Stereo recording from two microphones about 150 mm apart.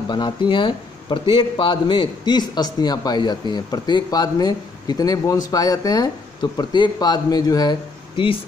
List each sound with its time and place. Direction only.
0.1 s a man's voice: 30° left (ahead or behind)